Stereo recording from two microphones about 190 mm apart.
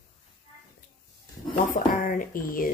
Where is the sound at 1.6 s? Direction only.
45° left (ahead or behind).